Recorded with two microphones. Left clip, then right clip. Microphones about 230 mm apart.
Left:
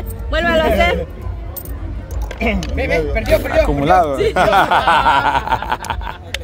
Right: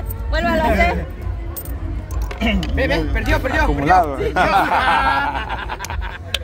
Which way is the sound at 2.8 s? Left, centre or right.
Right.